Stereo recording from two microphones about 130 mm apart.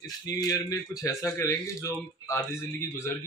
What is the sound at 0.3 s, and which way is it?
Speech, 25° left (ahead or behind).